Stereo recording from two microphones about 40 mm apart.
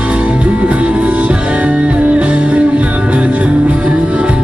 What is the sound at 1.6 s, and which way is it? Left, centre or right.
Music, right.